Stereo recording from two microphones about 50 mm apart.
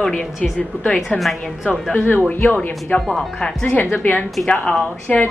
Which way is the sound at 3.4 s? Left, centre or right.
Left.